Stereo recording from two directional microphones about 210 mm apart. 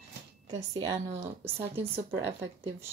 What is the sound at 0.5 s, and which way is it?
Speech, 15° right (ahead or behind).